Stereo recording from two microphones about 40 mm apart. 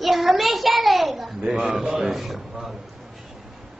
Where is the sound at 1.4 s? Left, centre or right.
Right; by 2.4 s centre.